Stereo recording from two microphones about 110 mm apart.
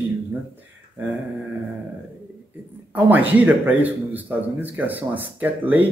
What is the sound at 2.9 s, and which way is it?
A man's voice, 15° right (ahead or behind).